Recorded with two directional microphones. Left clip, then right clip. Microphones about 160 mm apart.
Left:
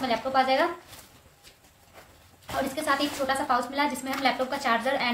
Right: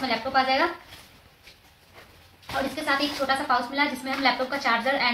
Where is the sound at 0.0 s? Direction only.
25° left (ahead or behind).